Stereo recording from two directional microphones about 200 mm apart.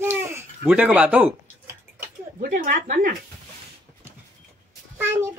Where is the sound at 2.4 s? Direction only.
40° right (ahead or behind).